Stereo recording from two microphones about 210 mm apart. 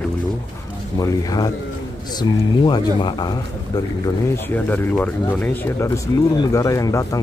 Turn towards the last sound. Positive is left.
turn(degrees=15)  # may be behind; listen again after turning